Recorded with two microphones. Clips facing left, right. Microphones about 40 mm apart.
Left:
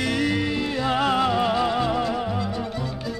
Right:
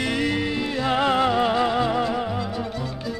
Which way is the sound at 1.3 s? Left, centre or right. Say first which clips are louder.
Right 1 dB; centre.